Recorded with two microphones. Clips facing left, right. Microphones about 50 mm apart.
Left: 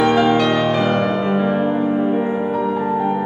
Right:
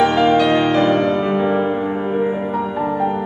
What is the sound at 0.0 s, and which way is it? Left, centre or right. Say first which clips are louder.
Music: right 1 dB; centre.